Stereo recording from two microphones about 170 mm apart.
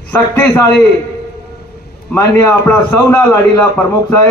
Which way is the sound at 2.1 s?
10° left (ahead or behind).